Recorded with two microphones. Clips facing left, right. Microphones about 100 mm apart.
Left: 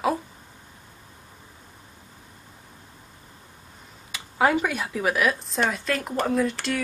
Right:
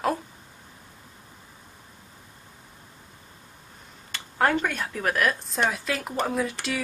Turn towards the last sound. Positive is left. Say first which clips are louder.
# left 4 dB
turn(degrees=0)  # may be behind; listen again after turning